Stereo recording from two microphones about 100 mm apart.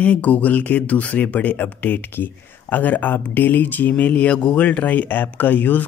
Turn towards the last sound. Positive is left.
turn(degrees=20)  # may be behind; listen again after turning